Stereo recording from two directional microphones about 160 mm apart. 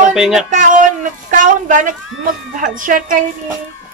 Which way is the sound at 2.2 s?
55° right (ahead or behind).